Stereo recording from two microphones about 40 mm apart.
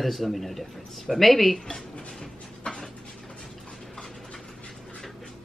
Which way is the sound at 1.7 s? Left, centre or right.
Centre.